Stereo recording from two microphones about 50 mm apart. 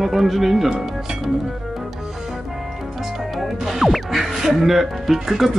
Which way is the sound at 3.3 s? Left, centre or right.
Centre.